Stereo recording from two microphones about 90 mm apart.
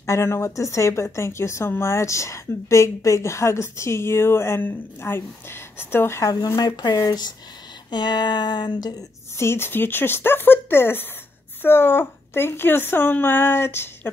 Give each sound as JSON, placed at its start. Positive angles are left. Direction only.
{"t": 0.0, "sound": "a woman's voice", "side_deg": 30}
{"t": 6.4, "sound": "speech", "side_deg": 45}
{"t": 9.4, "sound": "speech", "side_deg": 25}